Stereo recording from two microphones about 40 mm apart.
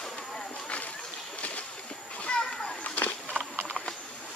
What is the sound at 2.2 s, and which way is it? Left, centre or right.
Children playing, left.